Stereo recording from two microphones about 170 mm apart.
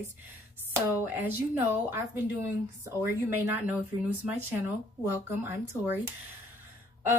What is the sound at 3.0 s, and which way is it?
A woman's voice, 10° right (ahead or behind).